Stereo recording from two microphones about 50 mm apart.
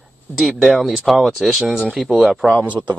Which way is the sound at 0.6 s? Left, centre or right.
Centre.